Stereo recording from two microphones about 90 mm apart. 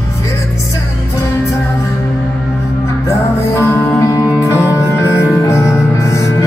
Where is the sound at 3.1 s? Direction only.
35° left (ahead or behind).